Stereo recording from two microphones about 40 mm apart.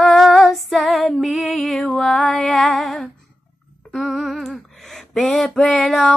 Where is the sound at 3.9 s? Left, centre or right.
Centre.